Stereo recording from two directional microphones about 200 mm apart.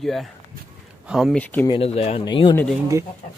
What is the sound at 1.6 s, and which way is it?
Speech, 25° left (ahead or behind).